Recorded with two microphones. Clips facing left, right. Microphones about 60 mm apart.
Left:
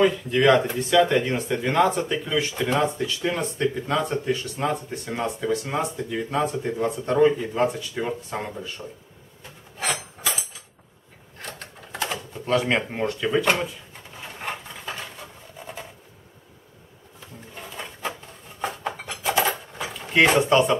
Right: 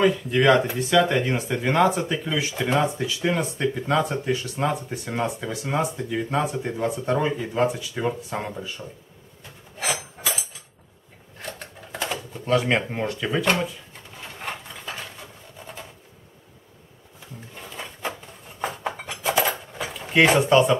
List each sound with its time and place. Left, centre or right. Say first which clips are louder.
0.0 s speech: even; centre
9.8 s wood: even; centre
11.4 s cash register: right 1 dB; centre
14.2 s a sound: left 1 dB; centre
17.6 s drawer open or close: left 1 dB; centre
18.9 s dishes: right 1 dB; centre